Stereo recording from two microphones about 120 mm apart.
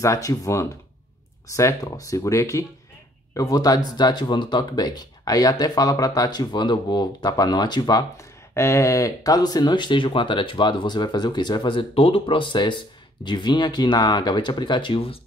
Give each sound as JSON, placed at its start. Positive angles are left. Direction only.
{"t": 0.0, "sound": "speech", "side_deg": 25}